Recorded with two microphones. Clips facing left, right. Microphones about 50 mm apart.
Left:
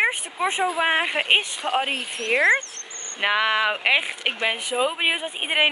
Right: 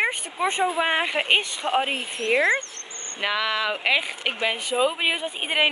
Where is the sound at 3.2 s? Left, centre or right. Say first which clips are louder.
Left 4 dB; left.